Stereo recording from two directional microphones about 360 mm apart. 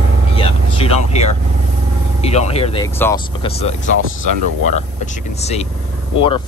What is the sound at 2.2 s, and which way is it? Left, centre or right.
Speech, centre.